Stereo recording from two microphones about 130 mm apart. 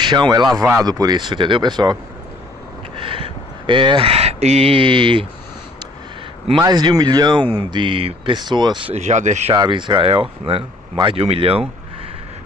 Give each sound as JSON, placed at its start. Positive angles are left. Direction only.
{"t": 0.0, "sound": "speech", "side_deg": -35}
{"t": 3.0, "sound": "speech", "side_deg": -45}
{"t": 6.6, "sound": "speech", "side_deg": -30}
{"t": 8.9, "sound": "speech", "side_deg": -65}
{"t": 9.5, "sound": "speech", "side_deg": -35}